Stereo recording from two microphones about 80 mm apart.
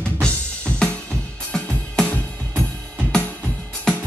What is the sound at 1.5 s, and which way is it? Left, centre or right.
Music, centre.